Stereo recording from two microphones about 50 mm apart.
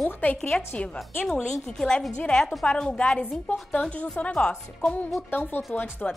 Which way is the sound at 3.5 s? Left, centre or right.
Left.